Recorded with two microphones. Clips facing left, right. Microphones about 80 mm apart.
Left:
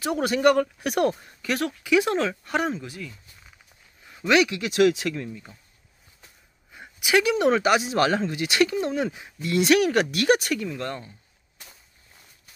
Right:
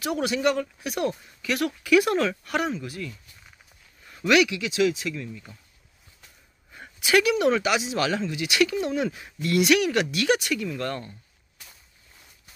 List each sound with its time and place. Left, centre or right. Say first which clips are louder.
0.0 s speech: left 3 dB; left
1.2 s speech: even; left
1.8 s speech: right 2 dB; left
4.2 s speech: even; left
4.6 s speech: left 4 dB; left
5.3 s speech: left 1 dB; centre
6.7 s a sound: even; centre
7.2 s speech: left 2 dB; left
9.6 s speech: left 2 dB; left
10.7 s speech: right 1 dB; centre